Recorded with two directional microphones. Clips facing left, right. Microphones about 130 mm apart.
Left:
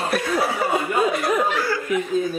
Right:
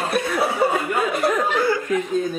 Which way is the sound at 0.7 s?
15° left (ahead or behind).